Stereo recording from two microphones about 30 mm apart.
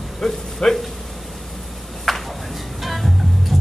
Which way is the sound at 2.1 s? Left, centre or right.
Centre.